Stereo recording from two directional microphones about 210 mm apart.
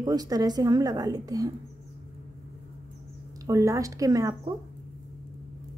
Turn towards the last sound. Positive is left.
turn(degrees=-15)  # may be behind; listen again after turning